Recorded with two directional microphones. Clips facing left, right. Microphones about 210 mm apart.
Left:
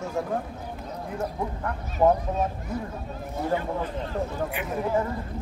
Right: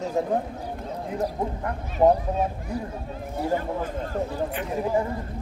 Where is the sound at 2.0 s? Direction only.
25° right (ahead or behind).